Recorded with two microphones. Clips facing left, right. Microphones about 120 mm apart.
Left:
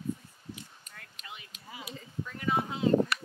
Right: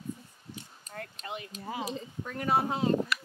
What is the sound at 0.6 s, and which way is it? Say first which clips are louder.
Speech: right 8 dB; 35° right (ahead or behind).